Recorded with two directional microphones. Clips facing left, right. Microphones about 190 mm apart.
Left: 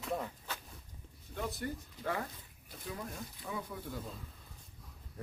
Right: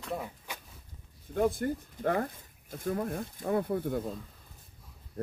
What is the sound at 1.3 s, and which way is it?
Speech, 50° right (ahead or behind).